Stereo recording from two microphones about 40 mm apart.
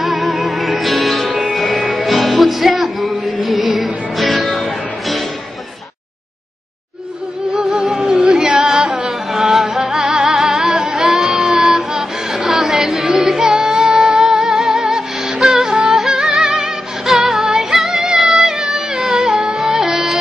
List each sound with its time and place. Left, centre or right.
0.0 s music: centre
7.5 s music: centre
9.0 s music: centre
16.1 s music: right
16.3 s music: centre